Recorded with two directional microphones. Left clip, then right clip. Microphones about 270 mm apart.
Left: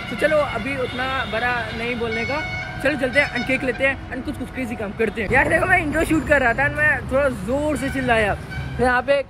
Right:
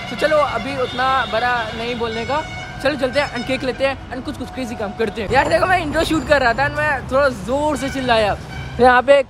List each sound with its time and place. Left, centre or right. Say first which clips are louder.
0.2 s a woman's voice: right 3 dB; centre
8.7 s speech: right 7 dB; right